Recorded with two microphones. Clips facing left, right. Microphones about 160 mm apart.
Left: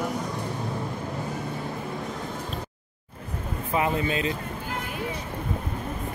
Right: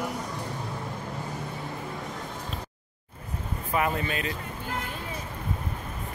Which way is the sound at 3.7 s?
25° left (ahead or behind).